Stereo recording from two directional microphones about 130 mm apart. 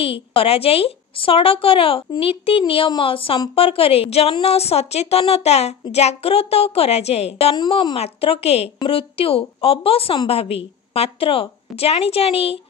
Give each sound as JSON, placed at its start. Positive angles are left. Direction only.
{"t": 0.0, "sound": "a woman's voice", "side_deg": 45}
{"t": 7.5, "sound": "a woman's voice", "side_deg": 35}
{"t": 7.9, "sound": "a woman's voice", "side_deg": 50}